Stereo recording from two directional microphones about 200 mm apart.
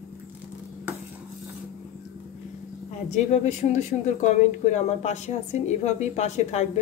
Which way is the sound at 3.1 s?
35° left (ahead or behind).